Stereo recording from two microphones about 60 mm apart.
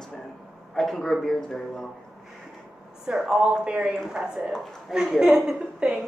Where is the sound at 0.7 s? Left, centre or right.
Centre.